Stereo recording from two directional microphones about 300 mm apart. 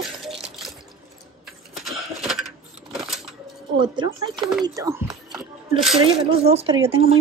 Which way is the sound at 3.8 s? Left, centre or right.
Centre.